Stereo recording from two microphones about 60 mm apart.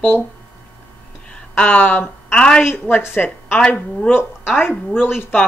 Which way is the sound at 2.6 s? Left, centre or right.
Left.